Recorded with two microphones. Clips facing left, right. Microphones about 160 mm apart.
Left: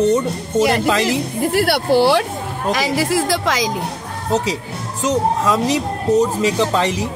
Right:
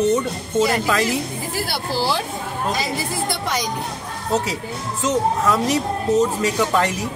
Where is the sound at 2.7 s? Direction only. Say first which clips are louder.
Left 7 dB; 90° left.